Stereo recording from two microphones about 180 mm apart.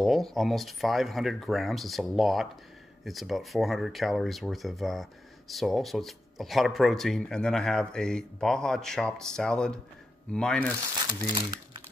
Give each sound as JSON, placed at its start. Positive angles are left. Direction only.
{"t": 0.0, "sound": "speech", "side_deg": 0}
{"t": 11.2, "sound": "speech", "side_deg": -20}